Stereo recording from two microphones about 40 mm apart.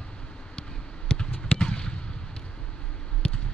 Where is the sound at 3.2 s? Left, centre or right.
Left.